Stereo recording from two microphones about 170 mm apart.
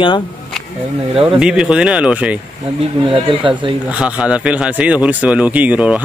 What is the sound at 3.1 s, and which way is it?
Speech, 30° right (ahead or behind).